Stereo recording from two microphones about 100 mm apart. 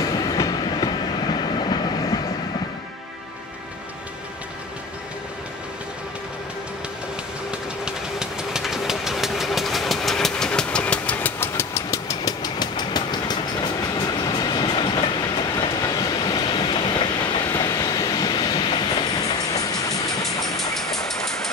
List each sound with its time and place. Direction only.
0.0 s train: 40° left (ahead or behind)
7.8 s vehicle: 5° right (ahead or behind); by 13.7 s 45° left (ahead or behind)
14.2 s train: 45° left (ahead or behind)
15.7 s train: 40° left (ahead or behind)
17.6 s train: 40° left (ahead or behind)
19.5 s vehicle: 35° left (ahead or behind)
20.4 s vehicle: 5° left (ahead or behind)